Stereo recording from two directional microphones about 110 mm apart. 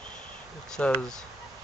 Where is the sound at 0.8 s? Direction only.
10° left (ahead or behind).